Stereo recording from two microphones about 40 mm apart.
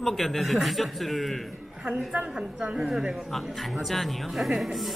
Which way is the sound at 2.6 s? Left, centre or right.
Right.